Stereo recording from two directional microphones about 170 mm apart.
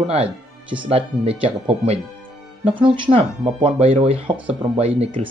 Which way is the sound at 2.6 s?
30° right (ahead or behind).